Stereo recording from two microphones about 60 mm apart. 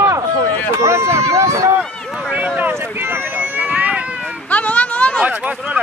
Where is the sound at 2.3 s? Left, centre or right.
Right.